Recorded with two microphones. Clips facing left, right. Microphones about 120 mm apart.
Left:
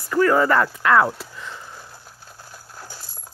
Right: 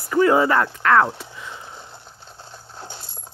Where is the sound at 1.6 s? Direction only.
20° right (ahead or behind).